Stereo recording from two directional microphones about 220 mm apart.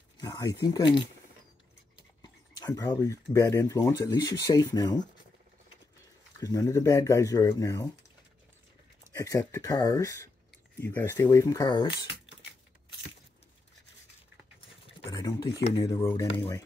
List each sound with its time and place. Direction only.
0.2 s speech: 15° left (ahead or behind)
2.2 s a sound: 15° left (ahead or behind)
3.3 s speech: 15° left (ahead or behind)
6.4 s speech: 15° left (ahead or behind)
9.1 s speech: 15° left (ahead or behind)
15.0 s a sound: 15° left (ahead or behind)
15.8 s speech: 15° left (ahead or behind)